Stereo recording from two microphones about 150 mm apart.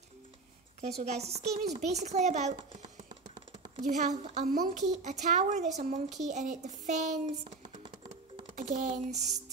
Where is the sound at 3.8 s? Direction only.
55° right (ahead or behind).